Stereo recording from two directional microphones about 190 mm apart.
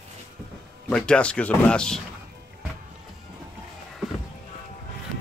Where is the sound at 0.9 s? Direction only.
5° left (ahead or behind).